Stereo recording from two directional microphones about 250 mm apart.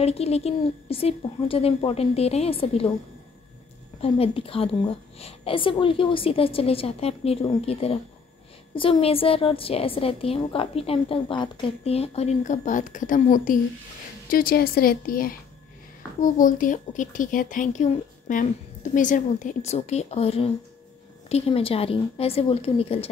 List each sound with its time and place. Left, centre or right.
0.0 s a woman's voice: left
4.0 s a woman's voice: left